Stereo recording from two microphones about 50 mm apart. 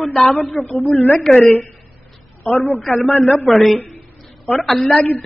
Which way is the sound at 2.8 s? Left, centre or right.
Left.